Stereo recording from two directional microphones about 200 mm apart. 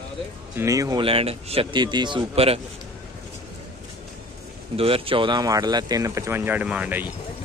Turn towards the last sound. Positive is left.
turn(degrees=-5)  # may be behind; listen again after turning